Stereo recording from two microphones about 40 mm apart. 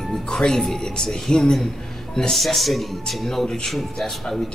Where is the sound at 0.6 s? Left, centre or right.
Centre.